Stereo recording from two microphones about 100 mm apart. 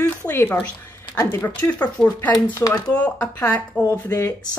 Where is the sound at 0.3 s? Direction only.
20° left (ahead or behind).